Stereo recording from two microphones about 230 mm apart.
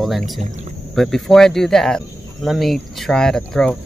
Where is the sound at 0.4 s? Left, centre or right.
Right.